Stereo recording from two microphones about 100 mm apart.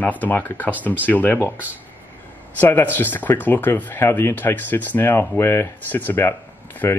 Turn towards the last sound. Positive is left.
turn(degrees=20)  # may be behind; listen again after turning